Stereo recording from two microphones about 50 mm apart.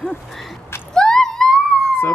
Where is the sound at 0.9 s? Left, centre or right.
Centre.